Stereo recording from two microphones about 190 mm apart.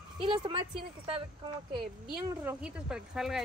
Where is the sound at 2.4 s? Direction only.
5° right (ahead or behind).